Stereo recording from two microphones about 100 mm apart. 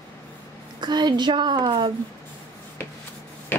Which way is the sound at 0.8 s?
45° right (ahead or behind).